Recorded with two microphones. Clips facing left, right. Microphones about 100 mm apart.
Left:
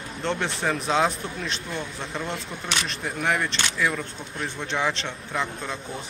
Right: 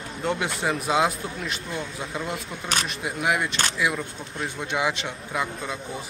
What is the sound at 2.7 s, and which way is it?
Speech, 45° right (ahead or behind).